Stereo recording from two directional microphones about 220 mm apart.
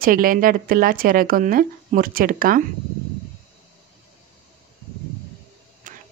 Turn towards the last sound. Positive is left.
turn(degrees=-35)  # may be behind; listen again after turning